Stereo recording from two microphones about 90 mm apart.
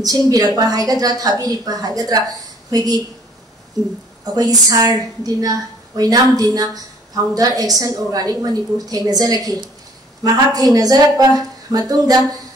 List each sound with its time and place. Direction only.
0.0 s a woman's voice: 45° right (ahead or behind)
4.4 s a woman's voice: 45° right (ahead or behind)